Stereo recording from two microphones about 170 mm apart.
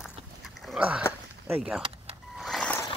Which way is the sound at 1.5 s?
5° right (ahead or behind).